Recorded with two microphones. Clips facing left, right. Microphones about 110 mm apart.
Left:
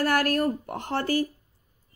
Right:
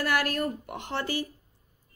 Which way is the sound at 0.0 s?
45° left (ahead or behind).